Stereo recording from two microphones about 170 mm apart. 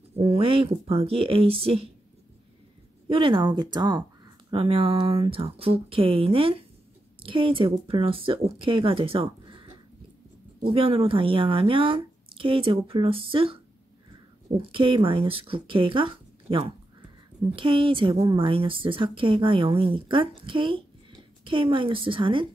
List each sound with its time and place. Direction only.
0.1 s a woman's voice: 35° right (ahead or behind)
3.1 s a woman's voice: 30° right (ahead or behind)
14.6 s a woman's voice: 30° right (ahead or behind)